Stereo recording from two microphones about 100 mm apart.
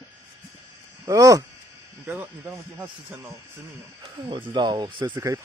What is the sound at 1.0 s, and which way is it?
Speech, 35° right (ahead or behind).